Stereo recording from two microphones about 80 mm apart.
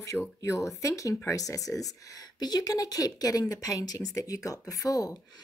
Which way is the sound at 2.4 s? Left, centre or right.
Left.